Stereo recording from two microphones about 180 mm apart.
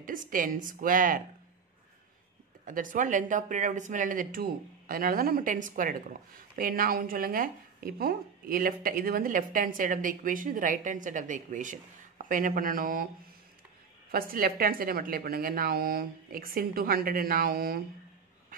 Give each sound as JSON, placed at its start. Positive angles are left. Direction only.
{"t": 0.0, "sound": "speech", "side_deg": -50}
{"t": 2.6, "sound": "speech", "side_deg": -50}
{"t": 14.1, "sound": "speech", "side_deg": -55}